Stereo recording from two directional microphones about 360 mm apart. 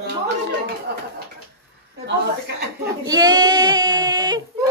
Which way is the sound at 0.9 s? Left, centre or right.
Right.